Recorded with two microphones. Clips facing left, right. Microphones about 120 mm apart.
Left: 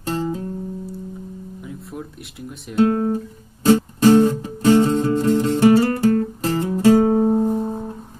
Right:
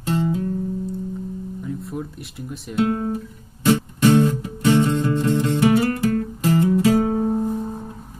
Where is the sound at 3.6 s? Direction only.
35° left (ahead or behind).